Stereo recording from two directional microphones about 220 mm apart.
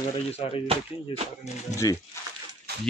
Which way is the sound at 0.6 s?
25° right (ahead or behind).